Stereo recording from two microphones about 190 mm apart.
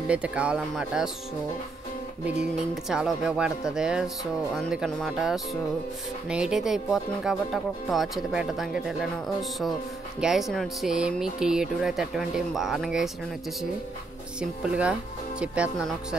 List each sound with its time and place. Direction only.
0.1 s speech: 5° right (ahead or behind)
2.5 s speech: 5° right (ahead or behind)
14.4 s speech: 5° right (ahead or behind)